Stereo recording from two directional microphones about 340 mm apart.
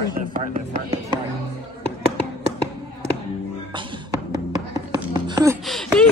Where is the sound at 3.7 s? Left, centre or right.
Centre.